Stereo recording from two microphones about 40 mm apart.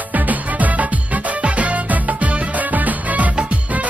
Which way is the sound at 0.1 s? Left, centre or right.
Right.